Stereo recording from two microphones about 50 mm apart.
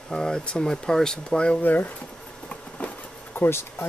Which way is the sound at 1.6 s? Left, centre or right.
Left.